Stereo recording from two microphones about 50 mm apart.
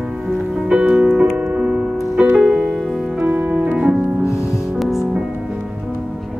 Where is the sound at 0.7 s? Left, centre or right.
Centre.